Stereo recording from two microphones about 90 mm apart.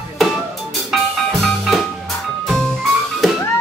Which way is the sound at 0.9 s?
Centre (ahead or behind).